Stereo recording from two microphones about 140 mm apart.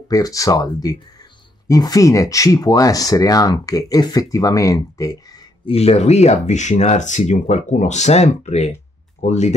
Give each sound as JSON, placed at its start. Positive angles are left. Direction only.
{"t": 0.1, "sound": "speech", "side_deg": 25}
{"t": 5.7, "sound": "speech", "side_deg": 45}